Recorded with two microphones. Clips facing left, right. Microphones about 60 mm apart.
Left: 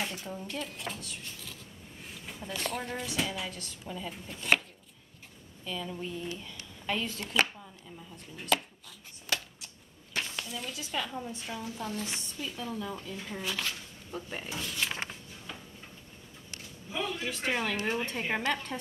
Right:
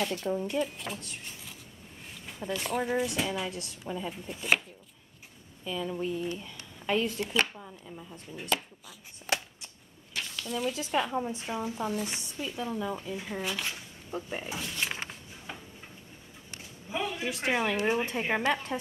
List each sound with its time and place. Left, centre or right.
0.0 s speech: centre
0.3 s a woman's voice: centre
0.7 s speech: centre
2.2 s speech: centre
5.6 s speech: centre
9.3 s shuffling cards: right
10.1 s a sound: left
10.7 s a woman's voice: right
11.9 s speech: centre
16.9 s a sound: centre
17.3 s speech: centre